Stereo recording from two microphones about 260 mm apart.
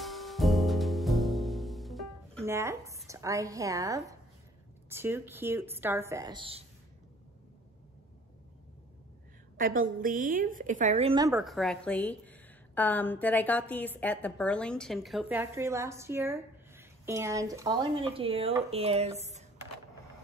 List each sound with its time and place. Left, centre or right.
0.0 s music: centre
2.4 s a woman's voice: centre
10.0 s a woman's voice: right
11.3 s a woman's voice: centre; by 19.4 s right